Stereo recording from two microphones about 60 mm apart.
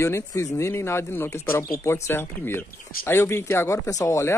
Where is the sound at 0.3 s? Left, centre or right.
Left.